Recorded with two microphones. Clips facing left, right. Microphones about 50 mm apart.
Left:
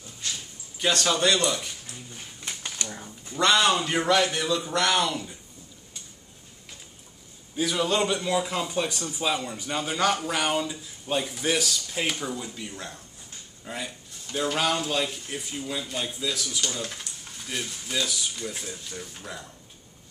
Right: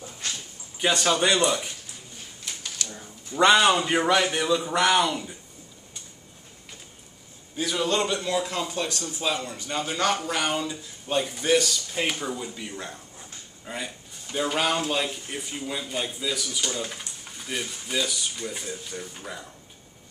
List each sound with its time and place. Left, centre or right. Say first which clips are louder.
0.7 s speech: right 2 dB; centre
2.4 s a sound: left 1 dB; left
3.3 s speech: right 3 dB; centre
7.5 s a man's voice: even; centre